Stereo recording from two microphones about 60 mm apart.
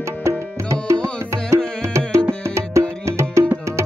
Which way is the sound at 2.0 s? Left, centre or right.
Right.